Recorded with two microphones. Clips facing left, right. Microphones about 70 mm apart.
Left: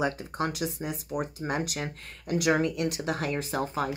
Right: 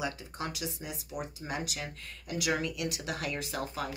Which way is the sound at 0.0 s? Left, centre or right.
Left.